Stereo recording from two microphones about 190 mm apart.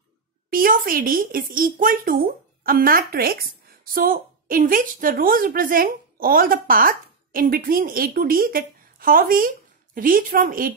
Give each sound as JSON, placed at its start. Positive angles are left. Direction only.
{"t": 0.5, "sound": "a woman's voice", "side_deg": -50}